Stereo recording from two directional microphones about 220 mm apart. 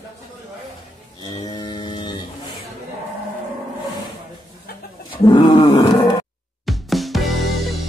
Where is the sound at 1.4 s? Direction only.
20° left (ahead or behind).